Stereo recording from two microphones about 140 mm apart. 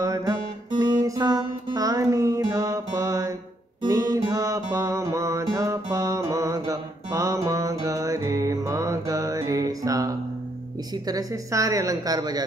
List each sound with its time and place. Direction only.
0.0 s music: 25° right (ahead or behind)
11.1 s a woman's voice: 25° right (ahead or behind)